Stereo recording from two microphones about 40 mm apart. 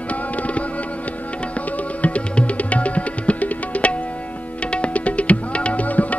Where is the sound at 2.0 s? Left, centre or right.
Left.